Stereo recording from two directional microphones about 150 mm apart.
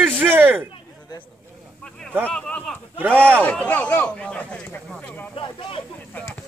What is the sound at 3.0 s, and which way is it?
Speech, 10° right (ahead or behind).